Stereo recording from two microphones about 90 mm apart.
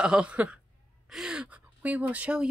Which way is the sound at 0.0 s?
10° right (ahead or behind).